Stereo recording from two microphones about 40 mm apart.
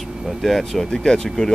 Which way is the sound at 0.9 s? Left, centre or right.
Centre.